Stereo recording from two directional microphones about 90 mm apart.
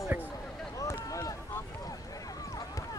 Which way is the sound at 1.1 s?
40° left (ahead or behind).